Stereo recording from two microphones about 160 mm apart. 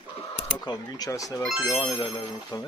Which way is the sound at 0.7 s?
25° left (ahead or behind).